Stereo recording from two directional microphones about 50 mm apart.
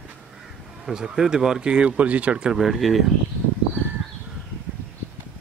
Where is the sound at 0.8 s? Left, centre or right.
Centre.